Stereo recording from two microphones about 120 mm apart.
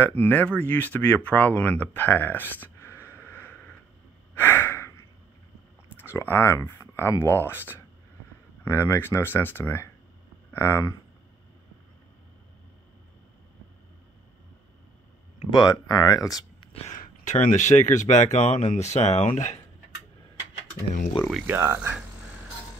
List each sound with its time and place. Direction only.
0.0 s speech: 15° left (ahead or behind)
4.4 s breathing: 20° left (ahead or behind)
5.9 s speech: 20° left (ahead or behind)
8.6 s speech: 25° left (ahead or behind)
15.5 s speech: 30° left (ahead or behind)
17.2 s speech: 90° left
21.5 s speech: 20° right (ahead or behind)